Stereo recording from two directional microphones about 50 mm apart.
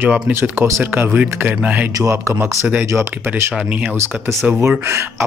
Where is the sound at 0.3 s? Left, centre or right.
Right.